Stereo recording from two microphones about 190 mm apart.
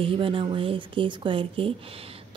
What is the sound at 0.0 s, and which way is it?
Speech, 25° right (ahead or behind).